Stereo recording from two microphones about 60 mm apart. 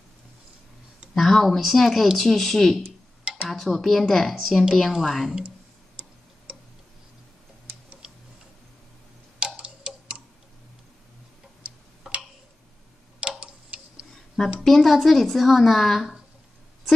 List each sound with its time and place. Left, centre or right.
1.1 s speech: centre
8.0 s tick-tock: centre
9.4 s tick-tock: centre
13.4 s tick-tock: centre
14.6 s speech: centre